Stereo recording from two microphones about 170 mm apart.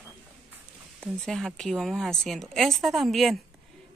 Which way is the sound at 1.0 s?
5° left (ahead or behind).